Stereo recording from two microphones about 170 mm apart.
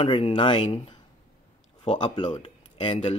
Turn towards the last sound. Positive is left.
turn(degrees=35)  # may be behind; listen again after turning